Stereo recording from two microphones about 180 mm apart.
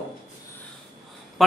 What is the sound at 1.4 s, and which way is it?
Speech, centre (ahead or behind).